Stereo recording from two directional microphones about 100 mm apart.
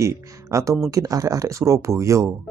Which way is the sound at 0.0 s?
30° right (ahead or behind).